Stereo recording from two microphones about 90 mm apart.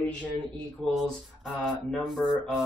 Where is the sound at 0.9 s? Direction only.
Centre (ahead or behind).